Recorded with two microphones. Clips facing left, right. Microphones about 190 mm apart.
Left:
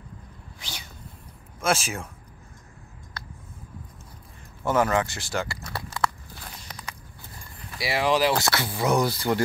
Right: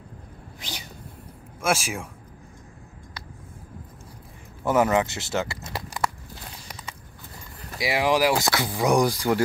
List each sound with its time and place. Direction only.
0.6 s cat: 15° right (ahead or behind)
1.6 s speech: 10° right (ahead or behind)
4.6 s speech: 20° right (ahead or behind)
5.8 s biting: 10° right (ahead or behind)
6.7 s a sound: 5° right (ahead or behind)
7.8 s speech: 15° right (ahead or behind)